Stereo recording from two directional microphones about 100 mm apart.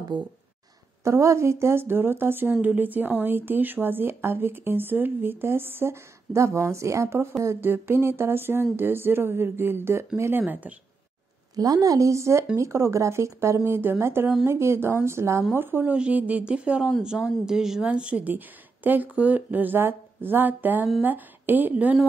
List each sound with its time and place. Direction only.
0.1 s speech: 50° right (ahead or behind)
1.0 s speech: 30° right (ahead or behind)
11.5 s a woman's voice: 40° right (ahead or behind); by 21.9 s 15° right (ahead or behind)